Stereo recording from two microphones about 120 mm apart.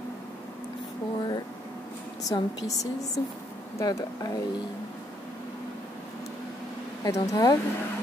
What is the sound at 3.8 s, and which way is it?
Speech, 30° left (ahead or behind).